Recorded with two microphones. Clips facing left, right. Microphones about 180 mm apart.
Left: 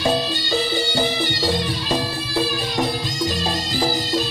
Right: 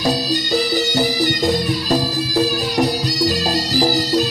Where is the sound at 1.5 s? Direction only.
45° right (ahead or behind).